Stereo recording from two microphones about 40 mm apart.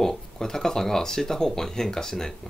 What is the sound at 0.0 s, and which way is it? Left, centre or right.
Speech, centre.